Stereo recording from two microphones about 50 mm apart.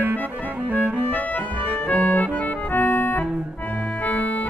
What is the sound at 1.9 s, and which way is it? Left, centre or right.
Accordion, left.